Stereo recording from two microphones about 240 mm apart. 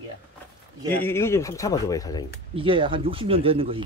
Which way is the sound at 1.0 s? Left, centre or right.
Centre.